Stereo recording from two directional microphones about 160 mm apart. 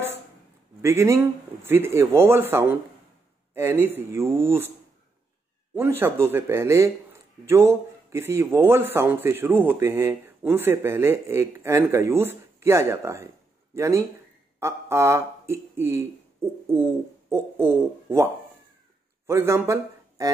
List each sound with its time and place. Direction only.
0.8 s speech: 15° right (ahead or behind)
5.8 s speech: 15° right (ahead or behind)